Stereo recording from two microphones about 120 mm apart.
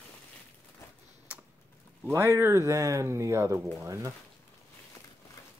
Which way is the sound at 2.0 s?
20° right (ahead or behind).